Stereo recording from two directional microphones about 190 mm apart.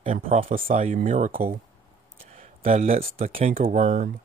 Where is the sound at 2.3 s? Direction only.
35° right (ahead or behind).